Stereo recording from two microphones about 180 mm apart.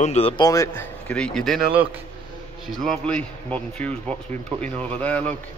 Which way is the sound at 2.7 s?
Centre (ahead or behind).